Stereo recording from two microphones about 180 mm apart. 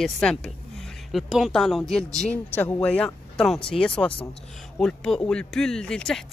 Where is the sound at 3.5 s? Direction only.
30° left (ahead or behind).